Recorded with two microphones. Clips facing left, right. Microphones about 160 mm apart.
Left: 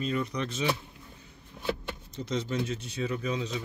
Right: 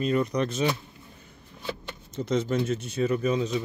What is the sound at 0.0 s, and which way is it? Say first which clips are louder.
Speech: right 6 dB; 45° right (ahead or behind).